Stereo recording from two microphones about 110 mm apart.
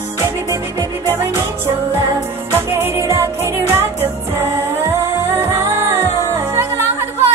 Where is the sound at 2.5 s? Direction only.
20° right (ahead or behind).